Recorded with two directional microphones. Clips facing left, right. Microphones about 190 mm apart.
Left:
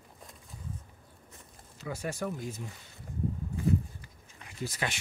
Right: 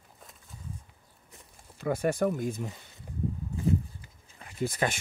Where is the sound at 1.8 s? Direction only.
55° right (ahead or behind).